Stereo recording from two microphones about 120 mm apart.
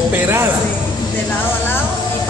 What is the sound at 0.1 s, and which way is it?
Speech, 20° right (ahead or behind).